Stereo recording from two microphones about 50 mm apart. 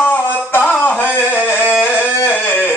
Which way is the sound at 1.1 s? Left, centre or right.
Left.